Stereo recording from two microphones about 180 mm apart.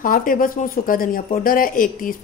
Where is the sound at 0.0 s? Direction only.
50° left (ahead or behind).